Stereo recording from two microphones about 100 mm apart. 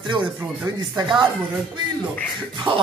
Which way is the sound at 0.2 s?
15° right (ahead or behind).